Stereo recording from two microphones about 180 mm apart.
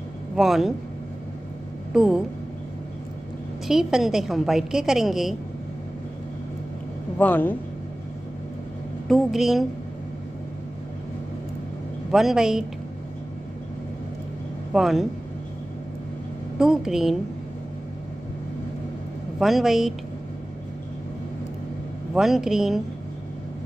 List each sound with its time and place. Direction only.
0.4 s a woman's voice: centre (ahead or behind)
2.0 s a woman's voice: 5° right (ahead or behind)
3.6 s a woman's voice: centre (ahead or behind)
7.2 s speech: 10° left (ahead or behind)
9.0 s a woman's voice: centre (ahead or behind)
12.1 s a woman's voice: centre (ahead or behind)
14.7 s speech: centre (ahead or behind)
16.5 s a woman's voice: 5° right (ahead or behind)
19.3 s a woman's voice: centre (ahead or behind)
22.1 s a woman's voice: centre (ahead or behind)